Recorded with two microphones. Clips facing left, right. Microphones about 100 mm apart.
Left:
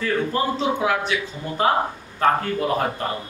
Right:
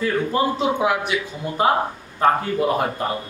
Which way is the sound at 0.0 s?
15° right (ahead or behind).